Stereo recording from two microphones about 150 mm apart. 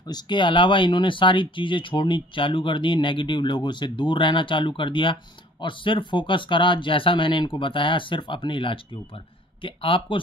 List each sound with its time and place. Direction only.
0.1 s speech: 30° left (ahead or behind)